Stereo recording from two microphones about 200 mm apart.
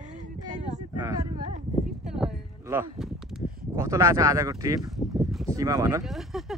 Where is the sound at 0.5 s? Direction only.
35° right (ahead or behind).